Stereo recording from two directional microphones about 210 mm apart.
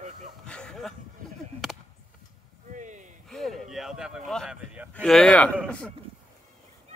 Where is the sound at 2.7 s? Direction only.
35° right (ahead or behind).